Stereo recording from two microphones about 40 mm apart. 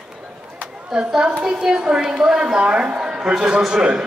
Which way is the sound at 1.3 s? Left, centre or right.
Right.